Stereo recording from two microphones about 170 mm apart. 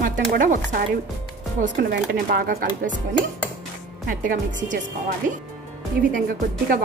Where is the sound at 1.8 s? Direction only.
60° right (ahead or behind).